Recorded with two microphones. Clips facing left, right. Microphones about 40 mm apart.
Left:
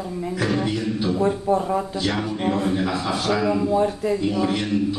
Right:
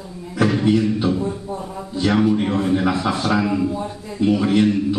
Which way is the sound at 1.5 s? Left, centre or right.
Left.